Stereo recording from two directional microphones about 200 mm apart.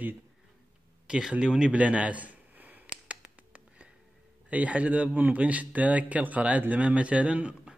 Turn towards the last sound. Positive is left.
turn(degrees=-5)  # may be behind; listen again after turning